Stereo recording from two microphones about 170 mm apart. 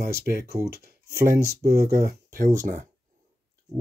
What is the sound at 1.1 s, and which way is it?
Speech, 15° right (ahead or behind).